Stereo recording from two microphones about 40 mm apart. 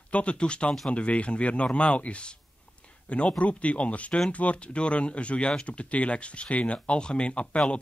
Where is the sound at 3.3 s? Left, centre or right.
Left.